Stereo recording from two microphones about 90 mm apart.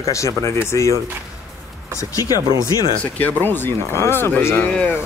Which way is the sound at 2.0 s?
40° left (ahead or behind).